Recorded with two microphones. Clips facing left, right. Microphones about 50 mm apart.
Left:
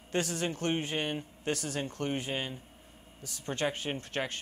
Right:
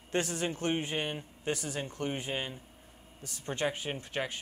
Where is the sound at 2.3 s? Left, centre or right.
Centre.